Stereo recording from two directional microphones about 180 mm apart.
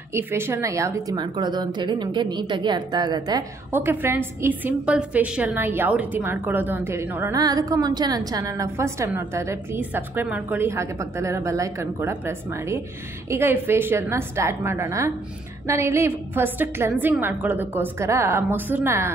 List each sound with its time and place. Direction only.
0.1 s a woman's voice: 15° right (ahead or behind)
3.7 s a woman's voice: 10° right (ahead or behind)